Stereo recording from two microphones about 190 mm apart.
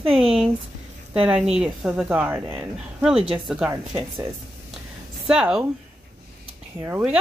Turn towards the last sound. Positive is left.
turn(degrees=-10)  # may be behind; listen again after turning